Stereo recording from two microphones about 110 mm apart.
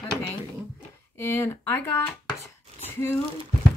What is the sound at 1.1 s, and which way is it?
Speech, 20° left (ahead or behind).